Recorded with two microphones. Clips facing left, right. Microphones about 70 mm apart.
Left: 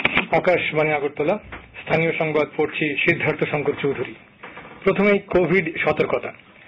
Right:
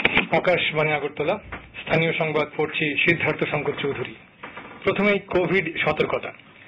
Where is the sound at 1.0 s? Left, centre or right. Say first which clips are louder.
Left 3 dB; centre.